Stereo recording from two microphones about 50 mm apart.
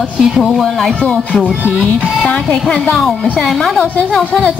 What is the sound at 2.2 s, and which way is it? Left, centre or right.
Speech, centre.